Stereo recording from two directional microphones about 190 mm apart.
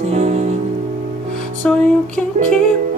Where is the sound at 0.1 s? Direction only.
35° right (ahead or behind).